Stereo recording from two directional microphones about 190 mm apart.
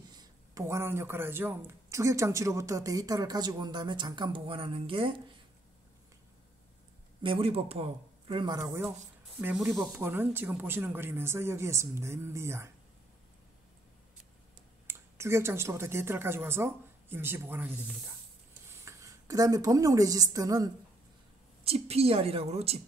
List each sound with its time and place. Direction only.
0.1 s speech: 20° right (ahead or behind)
7.2 s speech: 30° right (ahead or behind)
9.4 s speech: 5° right (ahead or behind)
14.9 s a woman's voice: 15° right (ahead or behind)
21.6 s a woman's voice: 35° right (ahead or behind)